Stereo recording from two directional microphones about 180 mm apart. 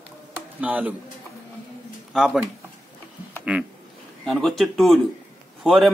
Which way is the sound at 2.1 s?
Centre (ahead or behind).